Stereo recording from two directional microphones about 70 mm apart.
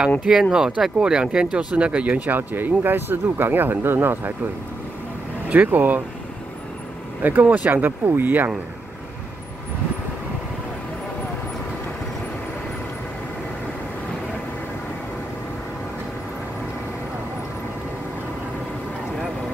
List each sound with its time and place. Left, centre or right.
0.2 s speech: centre; by 4.3 s right
5.5 s speech: right
7.2 s speech: right
7.7 s speech: right